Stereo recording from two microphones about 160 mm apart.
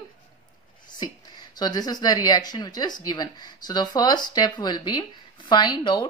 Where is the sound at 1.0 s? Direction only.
25° left (ahead or behind).